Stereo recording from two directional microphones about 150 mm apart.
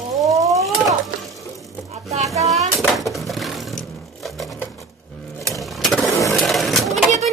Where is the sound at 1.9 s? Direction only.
45° right (ahead or behind).